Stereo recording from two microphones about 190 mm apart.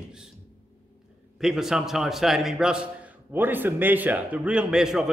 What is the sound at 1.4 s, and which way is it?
A man's voice, centre (ahead or behind).